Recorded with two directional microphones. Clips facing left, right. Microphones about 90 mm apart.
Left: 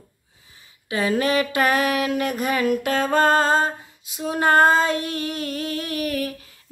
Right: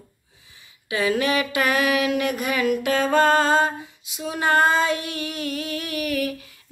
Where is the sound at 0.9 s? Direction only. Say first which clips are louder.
Left 1 dB; 35° left (ahead or behind).